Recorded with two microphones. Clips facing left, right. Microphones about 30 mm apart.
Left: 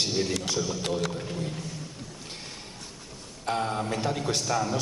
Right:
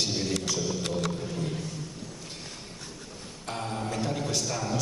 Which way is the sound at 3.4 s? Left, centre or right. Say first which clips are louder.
Left 6 dB; left.